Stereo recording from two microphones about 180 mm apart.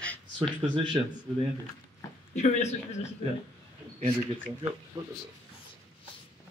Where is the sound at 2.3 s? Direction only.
40° left (ahead or behind).